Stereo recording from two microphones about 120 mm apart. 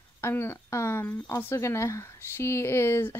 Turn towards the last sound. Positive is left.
turn(degrees=20)  # may be behind; listen again after turning